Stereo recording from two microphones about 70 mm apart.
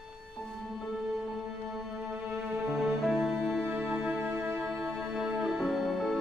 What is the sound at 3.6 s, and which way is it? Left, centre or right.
Music, right.